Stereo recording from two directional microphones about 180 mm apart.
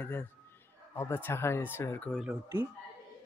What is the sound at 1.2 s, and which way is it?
Speech, 15° left (ahead or behind).